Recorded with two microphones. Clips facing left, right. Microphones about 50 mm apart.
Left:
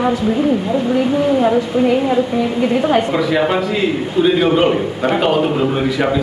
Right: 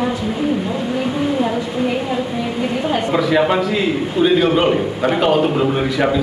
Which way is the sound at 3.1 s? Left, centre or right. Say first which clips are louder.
Even; centre.